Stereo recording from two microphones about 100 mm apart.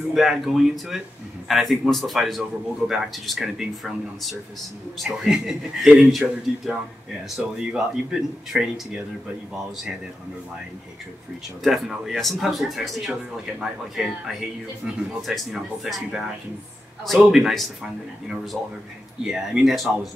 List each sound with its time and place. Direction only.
0.1 s speech: 5° right (ahead or behind)
11.6 s speech: centre (ahead or behind)